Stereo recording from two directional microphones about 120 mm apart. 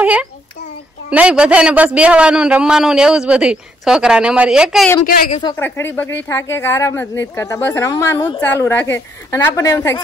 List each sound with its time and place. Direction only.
0.0 s a sound: 10° right (ahead or behind)
1.1 s a man's voice: 10° right (ahead or behind)
5.6 s speech: 20° left (ahead or behind)